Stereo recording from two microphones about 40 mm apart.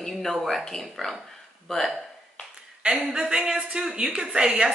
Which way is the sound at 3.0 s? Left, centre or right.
Centre.